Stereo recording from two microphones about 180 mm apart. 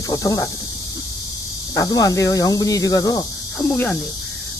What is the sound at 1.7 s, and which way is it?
Speech, 20° left (ahead or behind).